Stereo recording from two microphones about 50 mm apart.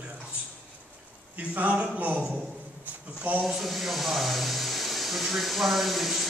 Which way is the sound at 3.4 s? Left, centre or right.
Centre.